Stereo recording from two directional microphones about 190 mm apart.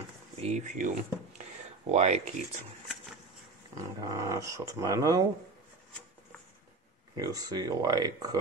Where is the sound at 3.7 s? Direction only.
20° right (ahead or behind).